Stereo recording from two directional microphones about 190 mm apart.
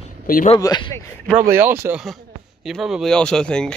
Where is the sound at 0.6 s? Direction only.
20° left (ahead or behind).